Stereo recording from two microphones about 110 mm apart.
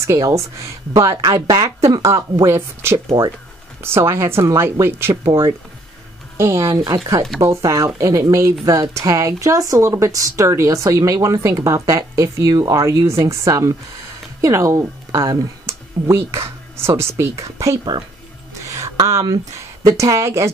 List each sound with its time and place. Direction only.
0.0 s speech: 30° right (ahead or behind)
6.3 s speech: 25° right (ahead or behind)
18.7 s a sound: 30° right (ahead or behind)
19.9 s speech: 30° right (ahead or behind)